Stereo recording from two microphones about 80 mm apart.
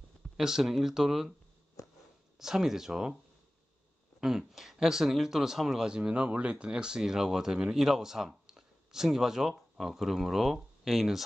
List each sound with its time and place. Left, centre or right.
0.4 s speech: centre
1.8 s a sound: left
2.3 s speech: centre
4.2 s speech: centre